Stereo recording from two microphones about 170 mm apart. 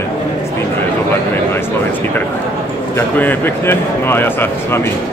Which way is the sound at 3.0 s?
10° left (ahead or behind).